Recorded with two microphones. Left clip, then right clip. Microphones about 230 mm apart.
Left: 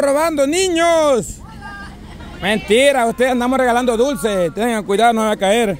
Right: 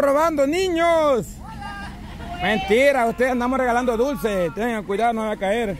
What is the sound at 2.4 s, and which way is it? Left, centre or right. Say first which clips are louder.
A man's voice: left 4 dB; left.